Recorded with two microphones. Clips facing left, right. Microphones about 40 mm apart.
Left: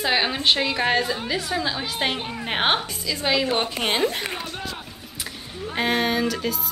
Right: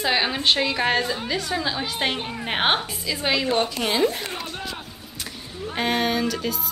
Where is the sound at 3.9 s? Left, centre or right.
Left.